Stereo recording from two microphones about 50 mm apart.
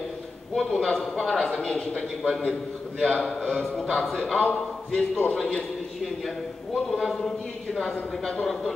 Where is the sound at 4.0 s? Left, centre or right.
Centre.